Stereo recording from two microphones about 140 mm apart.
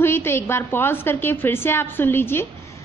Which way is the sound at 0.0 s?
15° left (ahead or behind).